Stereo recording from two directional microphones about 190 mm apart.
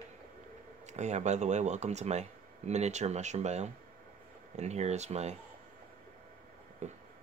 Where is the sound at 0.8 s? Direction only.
35° right (ahead or behind).